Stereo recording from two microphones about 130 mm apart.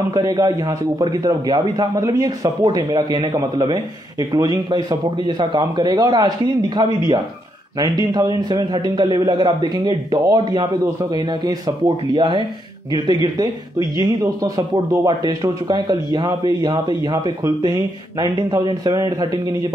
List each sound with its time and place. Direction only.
0.1 s a man's voice: 30° right (ahead or behind)